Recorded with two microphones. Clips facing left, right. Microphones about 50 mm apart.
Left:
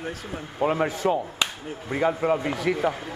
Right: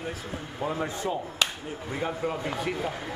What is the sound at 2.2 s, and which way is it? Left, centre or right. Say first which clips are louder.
Speech: left 7 dB; left.